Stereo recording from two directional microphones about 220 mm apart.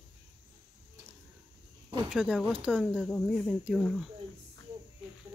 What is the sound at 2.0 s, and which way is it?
Speech, 5° right (ahead or behind).